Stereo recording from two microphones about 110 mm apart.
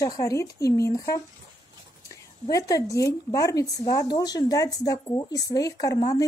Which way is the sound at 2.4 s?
35° left (ahead or behind).